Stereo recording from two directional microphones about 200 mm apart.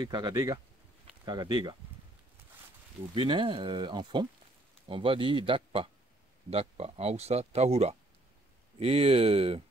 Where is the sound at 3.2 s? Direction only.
25° right (ahead or behind).